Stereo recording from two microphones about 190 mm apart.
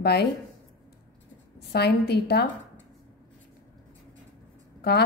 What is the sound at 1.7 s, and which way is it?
Speech, 55° left (ahead or behind).